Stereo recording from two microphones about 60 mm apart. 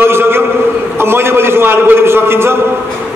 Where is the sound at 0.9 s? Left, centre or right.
Right.